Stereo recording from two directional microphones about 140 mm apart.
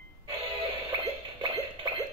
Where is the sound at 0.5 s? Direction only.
40° right (ahead or behind).